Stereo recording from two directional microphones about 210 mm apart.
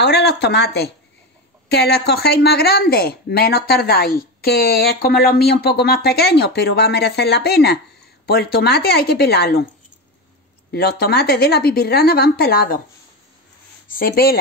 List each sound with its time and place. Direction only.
0.0 s speech: 50° left (ahead or behind)
10.7 s speech: 50° left (ahead or behind)
13.8 s speech: 45° left (ahead or behind)